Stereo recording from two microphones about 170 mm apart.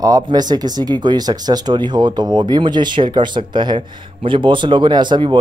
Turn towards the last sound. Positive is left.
turn(degrees=-25)  # may be behind; listen again after turning